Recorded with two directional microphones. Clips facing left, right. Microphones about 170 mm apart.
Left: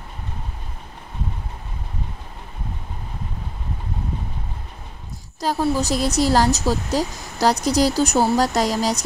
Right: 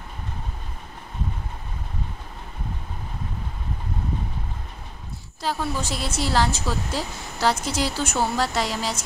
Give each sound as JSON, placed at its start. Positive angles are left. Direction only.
{"t": 5.4, "sound": "speech", "side_deg": 40}